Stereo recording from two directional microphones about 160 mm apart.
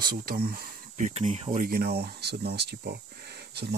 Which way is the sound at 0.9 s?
50° right (ahead or behind).